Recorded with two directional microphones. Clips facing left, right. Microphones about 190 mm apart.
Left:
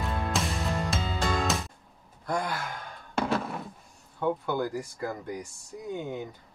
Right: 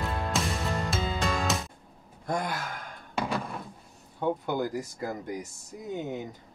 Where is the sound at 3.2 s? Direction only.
Centre (ahead or behind).